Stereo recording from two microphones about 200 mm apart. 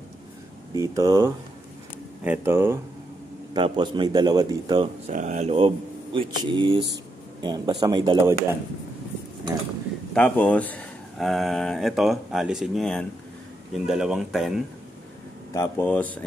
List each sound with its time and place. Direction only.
0.7 s speech: 15° right (ahead or behind)
3.5 s speech: 25° right (ahead or behind)
5.0 s speech: 35° right (ahead or behind); by 8.4 s 15° right (ahead or behind)
10.1 s speech: 5° left (ahead or behind)
15.5 s speech: 10° left (ahead or behind)